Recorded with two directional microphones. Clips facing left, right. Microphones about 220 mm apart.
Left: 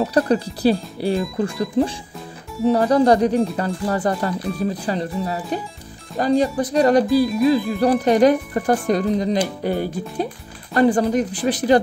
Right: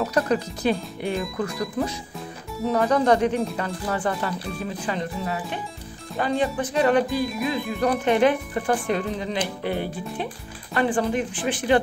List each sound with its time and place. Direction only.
0.0 s speech: 35° left (ahead or behind)